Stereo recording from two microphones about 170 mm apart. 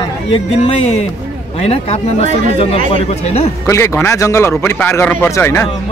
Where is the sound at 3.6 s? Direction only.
15° left (ahead or behind).